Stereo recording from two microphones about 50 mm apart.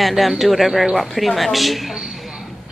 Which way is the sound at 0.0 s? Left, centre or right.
Centre.